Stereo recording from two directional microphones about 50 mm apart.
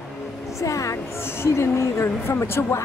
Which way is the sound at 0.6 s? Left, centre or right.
Left.